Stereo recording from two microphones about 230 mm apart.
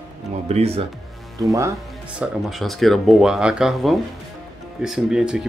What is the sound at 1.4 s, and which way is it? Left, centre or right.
Speech, centre.